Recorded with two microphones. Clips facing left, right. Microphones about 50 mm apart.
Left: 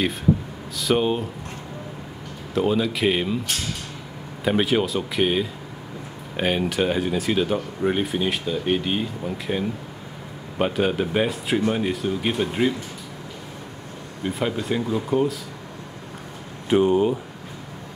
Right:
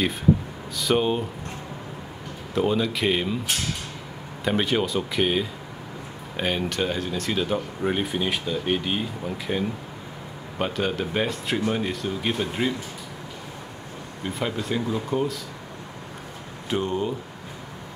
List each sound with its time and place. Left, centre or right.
0.7 s speech: centre
2.5 s speech: centre
4.5 s speech: centre
14.2 s speech: centre
16.6 s speech: centre